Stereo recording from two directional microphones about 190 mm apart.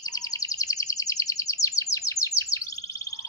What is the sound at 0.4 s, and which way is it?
Bird, 20° left (ahead or behind).